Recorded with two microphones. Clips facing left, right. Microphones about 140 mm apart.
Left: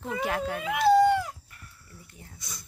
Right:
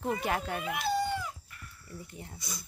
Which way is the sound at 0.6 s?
90° left.